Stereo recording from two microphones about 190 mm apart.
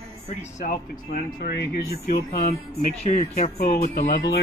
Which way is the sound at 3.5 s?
50° left (ahead or behind).